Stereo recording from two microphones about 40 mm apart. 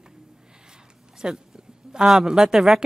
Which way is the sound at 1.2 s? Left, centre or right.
Right.